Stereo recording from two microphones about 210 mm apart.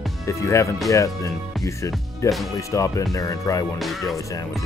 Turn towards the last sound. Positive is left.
turn(degrees=0)  # may be behind; listen again after turning